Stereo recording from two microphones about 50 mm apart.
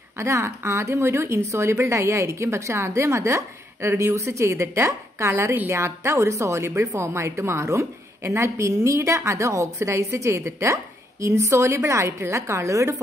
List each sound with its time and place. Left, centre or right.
0.2 s a woman's voice: right